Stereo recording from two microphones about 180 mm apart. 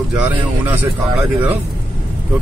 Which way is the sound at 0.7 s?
10° right (ahead or behind).